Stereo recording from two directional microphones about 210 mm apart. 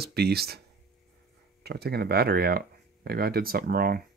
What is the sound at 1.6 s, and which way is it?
Speech, 50° right (ahead or behind).